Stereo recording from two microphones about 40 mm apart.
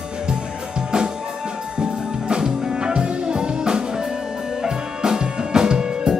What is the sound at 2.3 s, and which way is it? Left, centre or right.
Music, right.